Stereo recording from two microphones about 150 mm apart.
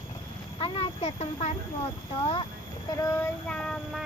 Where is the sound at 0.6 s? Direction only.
40° left (ahead or behind).